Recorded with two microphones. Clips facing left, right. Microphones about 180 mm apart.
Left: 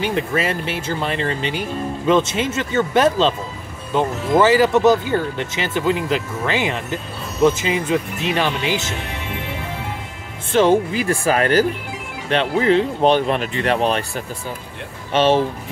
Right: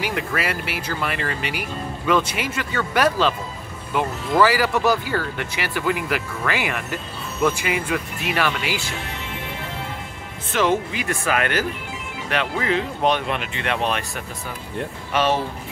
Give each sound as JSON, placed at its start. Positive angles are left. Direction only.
{"t": 0.0, "sound": "speech", "side_deg": 25}
{"t": 10.5, "sound": "speech", "side_deg": 30}